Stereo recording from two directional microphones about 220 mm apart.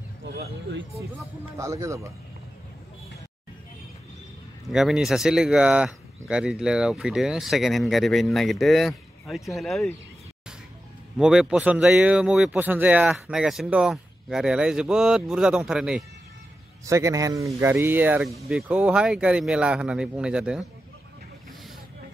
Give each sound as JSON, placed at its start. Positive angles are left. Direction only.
{"t": 0.4, "sound": "speech", "side_deg": -50}
{"t": 1.6, "sound": "speech", "side_deg": -15}
{"t": 4.6, "sound": "speech", "side_deg": 0}
{"t": 11.1, "sound": "speech", "side_deg": -5}
{"t": 16.8, "sound": "speech", "side_deg": -15}